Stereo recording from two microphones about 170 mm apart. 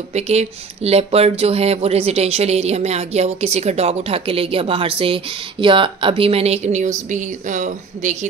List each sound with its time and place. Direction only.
0.1 s speech: 40° right (ahead or behind)